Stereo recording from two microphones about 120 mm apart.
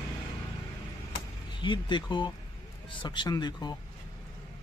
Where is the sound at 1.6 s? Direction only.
40° left (ahead or behind).